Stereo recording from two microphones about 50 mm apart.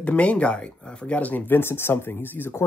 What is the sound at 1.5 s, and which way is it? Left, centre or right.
Speech, left.